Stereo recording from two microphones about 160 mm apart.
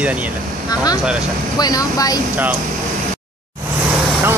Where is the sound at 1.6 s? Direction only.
25° left (ahead or behind).